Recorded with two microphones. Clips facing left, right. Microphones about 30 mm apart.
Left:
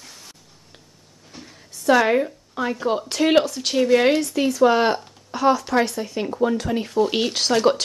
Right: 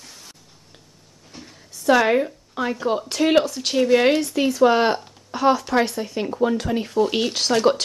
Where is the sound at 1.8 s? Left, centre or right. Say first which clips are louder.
Even; centre.